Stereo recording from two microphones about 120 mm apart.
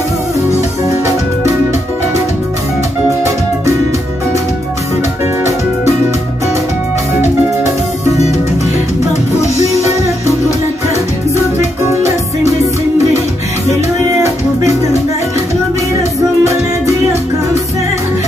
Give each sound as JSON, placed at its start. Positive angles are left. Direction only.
{"t": 13.7, "sound": "music", "side_deg": -25}
{"t": 16.0, "sound": "music", "side_deg": -25}